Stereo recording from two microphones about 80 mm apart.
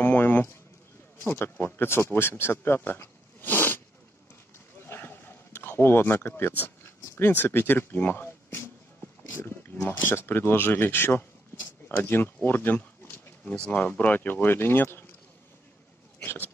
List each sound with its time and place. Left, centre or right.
0.0 s speech: left
4.7 s a sound: left
9.3 s speech: left
12.4 s a sound: left
13.4 s speech: centre
16.2 s hiccup: left